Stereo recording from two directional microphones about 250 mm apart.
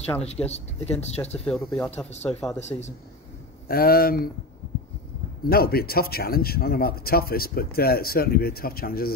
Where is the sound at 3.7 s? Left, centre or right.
Left.